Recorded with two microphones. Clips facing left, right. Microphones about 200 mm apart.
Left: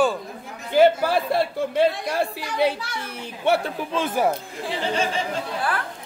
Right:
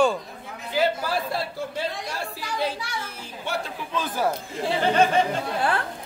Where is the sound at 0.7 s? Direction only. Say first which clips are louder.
Left 7 dB; 55° left (ahead or behind).